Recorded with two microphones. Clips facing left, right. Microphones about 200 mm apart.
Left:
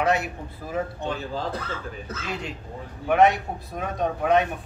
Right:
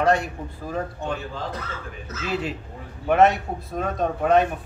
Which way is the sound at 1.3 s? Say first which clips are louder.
Left 2 dB; 30° left (ahead or behind).